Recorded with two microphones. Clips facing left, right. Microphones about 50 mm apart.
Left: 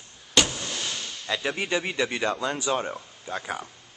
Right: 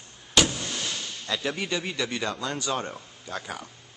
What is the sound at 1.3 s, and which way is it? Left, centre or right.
Speech, centre.